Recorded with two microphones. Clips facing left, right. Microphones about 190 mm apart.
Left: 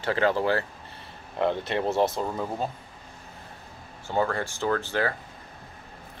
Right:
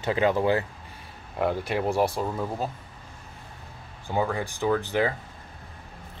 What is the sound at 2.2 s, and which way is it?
Speech, centre (ahead or behind).